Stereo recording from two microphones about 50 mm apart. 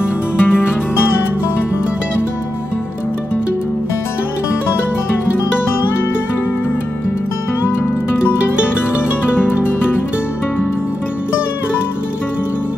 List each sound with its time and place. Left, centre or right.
0.0 s music: left